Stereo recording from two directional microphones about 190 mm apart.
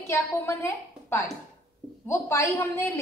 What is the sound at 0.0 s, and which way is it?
Speech, 15° left (ahead or behind).